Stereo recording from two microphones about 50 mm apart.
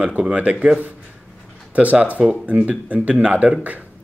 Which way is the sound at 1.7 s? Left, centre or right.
Right.